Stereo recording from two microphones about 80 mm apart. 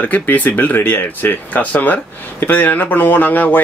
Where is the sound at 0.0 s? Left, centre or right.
Left.